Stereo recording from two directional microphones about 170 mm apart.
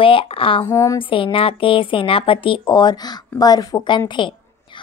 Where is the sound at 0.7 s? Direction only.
15° left (ahead or behind).